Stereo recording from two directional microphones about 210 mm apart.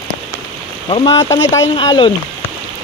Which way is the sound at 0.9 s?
20° left (ahead or behind).